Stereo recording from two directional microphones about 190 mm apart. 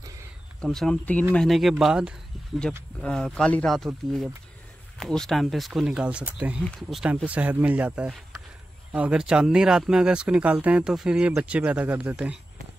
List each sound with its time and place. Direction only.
0.6 s speech: 5° left (ahead or behind)